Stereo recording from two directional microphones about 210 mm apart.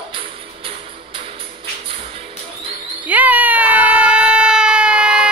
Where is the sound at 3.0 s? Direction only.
5° right (ahead or behind).